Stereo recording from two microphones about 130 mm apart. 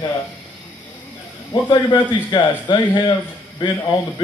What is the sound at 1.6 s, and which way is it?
A man's voice, 40° left (ahead or behind).